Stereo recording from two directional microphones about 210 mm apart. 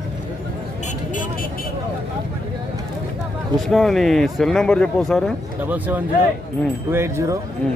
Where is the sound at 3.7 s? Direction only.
Centre (ahead or behind).